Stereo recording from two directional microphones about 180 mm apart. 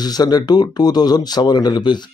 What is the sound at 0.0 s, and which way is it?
A man's voice, 20° left (ahead or behind).